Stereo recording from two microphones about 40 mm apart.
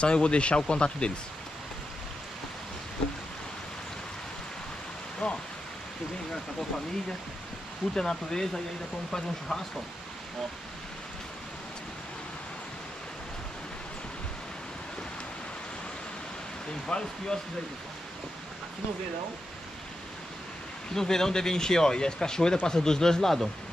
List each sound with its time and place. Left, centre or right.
0.0 s speech: left
5.2 s speech: centre
7.9 s speech: centre
9.5 s speech: centre
16.8 s speech: centre
20.9 s speech: centre